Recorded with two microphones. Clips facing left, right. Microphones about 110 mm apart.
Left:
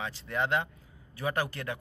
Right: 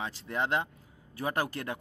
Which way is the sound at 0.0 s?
35° right (ahead or behind).